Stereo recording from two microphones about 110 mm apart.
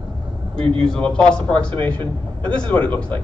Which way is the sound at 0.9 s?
10° left (ahead or behind).